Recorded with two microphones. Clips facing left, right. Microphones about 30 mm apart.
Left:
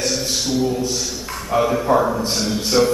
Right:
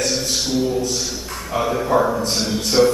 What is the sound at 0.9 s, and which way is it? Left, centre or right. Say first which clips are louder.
A man's voice: even; centre.